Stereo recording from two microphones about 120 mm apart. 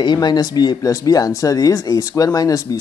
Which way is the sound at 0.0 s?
35° left (ahead or behind).